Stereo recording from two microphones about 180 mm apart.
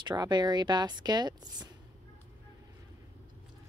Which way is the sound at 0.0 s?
25° right (ahead or behind).